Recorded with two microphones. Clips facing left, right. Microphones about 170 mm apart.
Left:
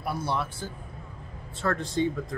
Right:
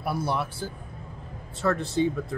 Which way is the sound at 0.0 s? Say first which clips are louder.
Right 2 dB; 10° right (ahead or behind).